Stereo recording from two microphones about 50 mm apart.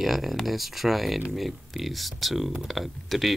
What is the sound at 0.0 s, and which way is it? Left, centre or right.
Speech, centre.